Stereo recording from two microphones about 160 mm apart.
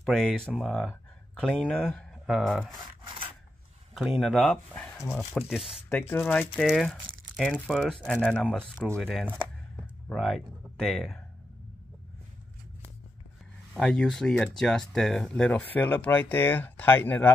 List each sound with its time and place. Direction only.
0.0 s speech: centre (ahead or behind)
3.9 s speech: centre (ahead or behind)
4.9 s speech: 15° left (ahead or behind)
5.5 s speech: centre (ahead or behind)
5.9 s speech: 15° left (ahead or behind)
13.7 s speech: 5° left (ahead or behind)